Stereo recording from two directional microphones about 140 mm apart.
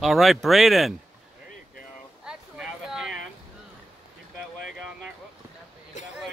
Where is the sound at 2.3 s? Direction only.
5° right (ahead or behind).